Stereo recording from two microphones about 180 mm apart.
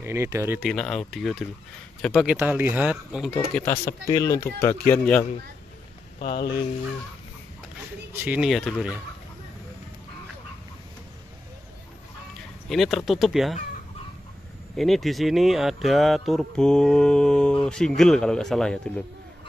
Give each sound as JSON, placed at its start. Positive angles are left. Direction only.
{"t": 0.0, "sound": "speech", "side_deg": -15}
{"t": 0.7, "sound": "speech", "side_deg": 5}
{"t": 2.3, "sound": "speech", "side_deg": -10}
{"t": 3.5, "sound": "speech", "side_deg": 15}
{"t": 6.1, "sound": "speech", "side_deg": 60}
{"t": 8.1, "sound": "speech", "side_deg": -10}
{"t": 12.6, "sound": "speech", "side_deg": 0}
{"t": 14.8, "sound": "speech", "side_deg": 0}